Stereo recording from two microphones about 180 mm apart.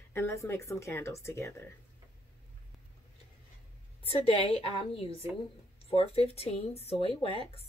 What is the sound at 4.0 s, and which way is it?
Speech, 30° left (ahead or behind).